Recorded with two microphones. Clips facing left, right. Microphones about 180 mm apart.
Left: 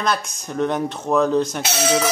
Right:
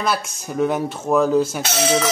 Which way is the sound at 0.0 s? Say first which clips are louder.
Even; 5° right (ahead or behind).